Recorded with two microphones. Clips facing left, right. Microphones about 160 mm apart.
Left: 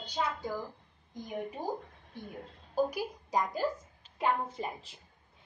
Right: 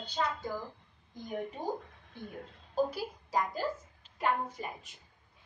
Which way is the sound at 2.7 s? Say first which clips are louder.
Left 1 dB; 15° left (ahead or behind).